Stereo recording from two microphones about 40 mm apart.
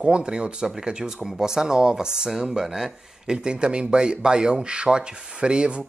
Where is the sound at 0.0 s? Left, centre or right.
Right.